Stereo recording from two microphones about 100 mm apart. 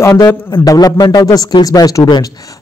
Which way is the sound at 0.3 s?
30° left (ahead or behind).